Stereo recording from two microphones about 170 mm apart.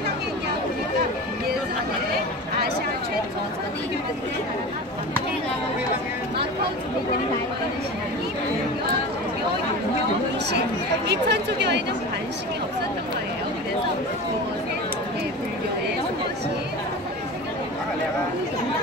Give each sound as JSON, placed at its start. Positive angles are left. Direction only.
{"t": 11.1, "sound": "chatter", "side_deg": -85}